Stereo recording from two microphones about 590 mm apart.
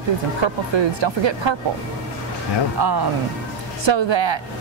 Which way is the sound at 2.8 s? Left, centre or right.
Right.